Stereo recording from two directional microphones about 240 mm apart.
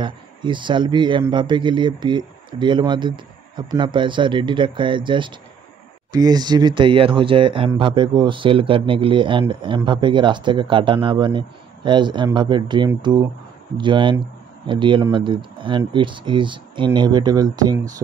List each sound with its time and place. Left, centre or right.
0.0 s speech: centre